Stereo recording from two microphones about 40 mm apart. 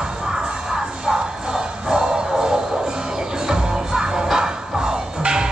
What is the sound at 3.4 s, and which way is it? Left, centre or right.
Music, centre.